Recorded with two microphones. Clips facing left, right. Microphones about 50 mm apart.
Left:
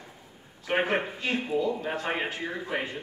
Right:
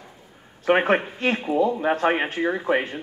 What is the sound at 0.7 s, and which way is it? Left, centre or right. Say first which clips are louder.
A man's voice: right 7 dB; right.